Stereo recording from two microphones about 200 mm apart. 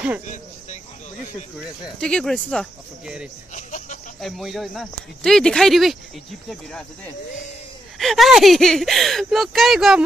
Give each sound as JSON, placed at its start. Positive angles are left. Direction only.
{"t": 2.0, "sound": "speech", "side_deg": 5}
{"t": 3.5, "sound": "a sound", "side_deg": 40}
{"t": 4.2, "sound": "speech", "side_deg": 0}
{"t": 8.0, "sound": "speech", "side_deg": 0}